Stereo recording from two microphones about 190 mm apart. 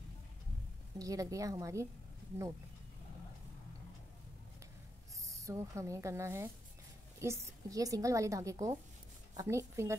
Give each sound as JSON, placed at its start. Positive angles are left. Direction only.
{"t": 0.9, "sound": "a woman's voice", "side_deg": -20}
{"t": 5.2, "sound": "a woman's voice", "side_deg": -15}